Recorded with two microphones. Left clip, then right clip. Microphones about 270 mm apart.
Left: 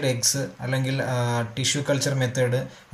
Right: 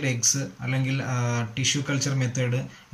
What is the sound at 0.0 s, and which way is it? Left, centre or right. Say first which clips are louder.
Speech: left 1 dB; centre.